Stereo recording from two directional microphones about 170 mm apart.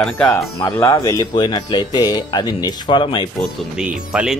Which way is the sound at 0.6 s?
15° left (ahead or behind).